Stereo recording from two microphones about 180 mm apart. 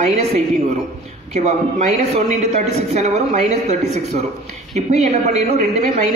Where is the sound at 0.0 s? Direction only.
35° right (ahead or behind).